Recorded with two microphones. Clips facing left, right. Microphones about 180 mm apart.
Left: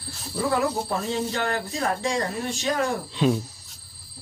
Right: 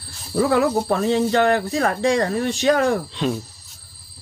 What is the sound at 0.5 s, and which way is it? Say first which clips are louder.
Speech: right 5 dB; 80° right.